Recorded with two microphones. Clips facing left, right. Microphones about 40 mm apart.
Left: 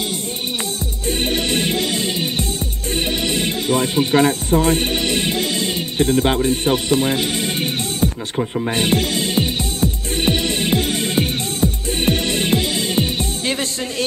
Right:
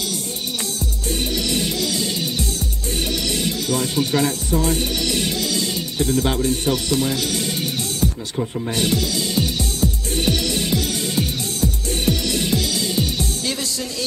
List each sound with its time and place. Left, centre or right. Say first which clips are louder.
1.2 s music: left 3 dB; left